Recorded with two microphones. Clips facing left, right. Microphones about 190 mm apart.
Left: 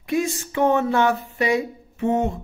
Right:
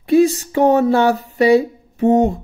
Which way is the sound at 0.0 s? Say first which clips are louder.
Right 10 dB; 35° right (ahead or behind).